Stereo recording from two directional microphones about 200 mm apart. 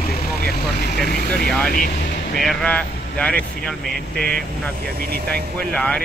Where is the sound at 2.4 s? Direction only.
5° left (ahead or behind).